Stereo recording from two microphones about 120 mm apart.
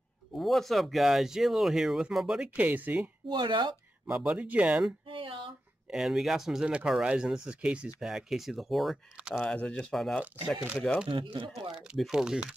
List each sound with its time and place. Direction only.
0.4 s speech: centre (ahead or behind)
3.3 s speech: 40° right (ahead or behind)
4.1 s speech: 10° right (ahead or behind)
5.0 s a sound: 45° right (ahead or behind)
5.9 s speech: 5° right (ahead or behind)
9.6 s speech: 10° left (ahead or behind)
11.1 s speech: 45° right (ahead or behind)
11.7 s speech: 5° right (ahead or behind)